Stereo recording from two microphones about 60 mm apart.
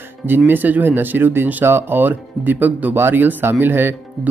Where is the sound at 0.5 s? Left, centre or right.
Right.